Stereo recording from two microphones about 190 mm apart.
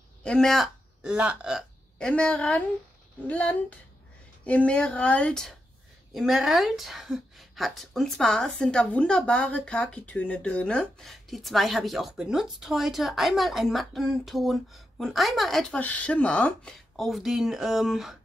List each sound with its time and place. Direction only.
0.2 s a woman's voice: 5° left (ahead or behind)